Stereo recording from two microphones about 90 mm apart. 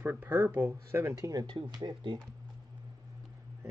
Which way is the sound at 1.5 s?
55° right (ahead or behind).